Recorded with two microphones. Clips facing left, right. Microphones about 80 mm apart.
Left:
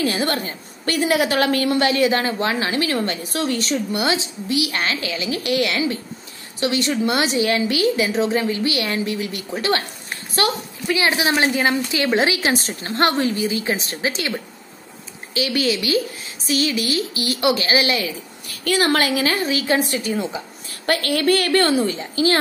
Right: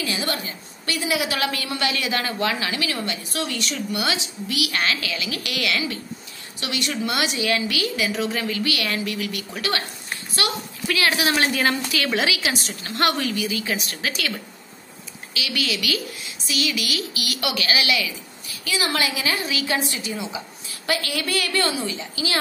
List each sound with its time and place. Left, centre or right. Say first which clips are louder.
0.0 s a woman's voice: left 6 dB; left
10.4 s a sound: left 5 dB; left
10.9 s a woman's voice: left 3 dB; left
18.5 s a woman's voice: left 7 dB; left